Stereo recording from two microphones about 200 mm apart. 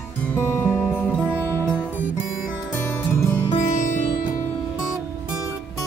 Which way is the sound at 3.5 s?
35° left (ahead or behind).